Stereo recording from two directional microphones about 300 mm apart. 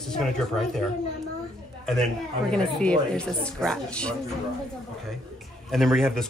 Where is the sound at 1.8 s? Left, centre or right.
Centre.